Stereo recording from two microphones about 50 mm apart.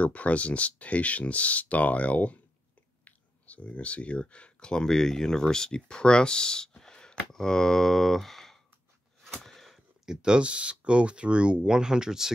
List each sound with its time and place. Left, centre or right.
0.0 s speech: left; by 8.5 s centre
9.4 s a sound: centre
10.0 s speech: centre